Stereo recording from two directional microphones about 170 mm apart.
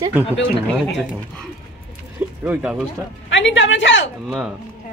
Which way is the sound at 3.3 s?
90° left.